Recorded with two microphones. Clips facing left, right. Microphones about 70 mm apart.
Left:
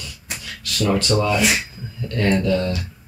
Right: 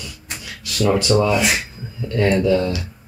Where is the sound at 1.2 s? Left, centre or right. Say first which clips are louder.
Right 1 dB; centre.